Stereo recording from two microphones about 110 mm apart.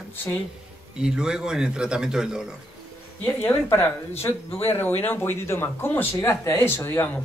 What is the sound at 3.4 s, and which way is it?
Speech, 20° left (ahead or behind).